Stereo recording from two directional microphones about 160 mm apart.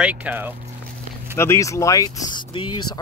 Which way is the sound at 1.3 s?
15° left (ahead or behind).